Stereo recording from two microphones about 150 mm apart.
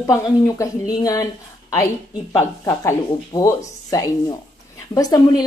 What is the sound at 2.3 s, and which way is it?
A woman's voice, 20° left (ahead or behind).